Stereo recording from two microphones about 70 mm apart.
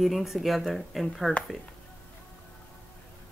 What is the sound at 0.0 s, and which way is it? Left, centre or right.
Speech, centre.